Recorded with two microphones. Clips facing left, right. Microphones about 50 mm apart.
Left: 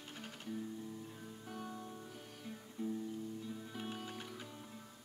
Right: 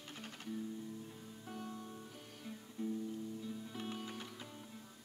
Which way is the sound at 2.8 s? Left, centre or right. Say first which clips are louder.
Even; centre.